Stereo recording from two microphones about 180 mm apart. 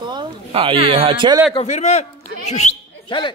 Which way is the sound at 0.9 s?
30° right (ahead or behind).